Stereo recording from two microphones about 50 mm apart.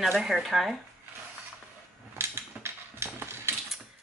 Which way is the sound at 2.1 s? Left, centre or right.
Right.